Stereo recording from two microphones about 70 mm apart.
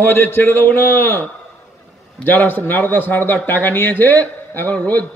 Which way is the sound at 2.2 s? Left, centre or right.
Left.